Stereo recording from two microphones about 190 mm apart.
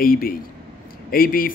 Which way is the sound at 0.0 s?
50° left (ahead or behind).